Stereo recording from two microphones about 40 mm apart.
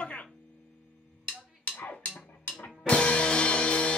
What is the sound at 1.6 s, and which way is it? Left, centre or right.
Music, left.